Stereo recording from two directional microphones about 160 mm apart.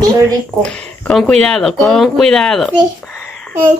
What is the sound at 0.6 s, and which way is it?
Speech, 5° left (ahead or behind).